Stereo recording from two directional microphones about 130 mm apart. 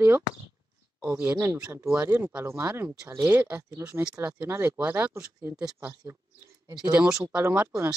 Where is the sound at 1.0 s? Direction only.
10° right (ahead or behind).